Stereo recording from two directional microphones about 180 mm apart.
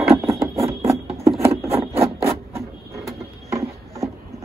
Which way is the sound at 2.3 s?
15° right (ahead or behind).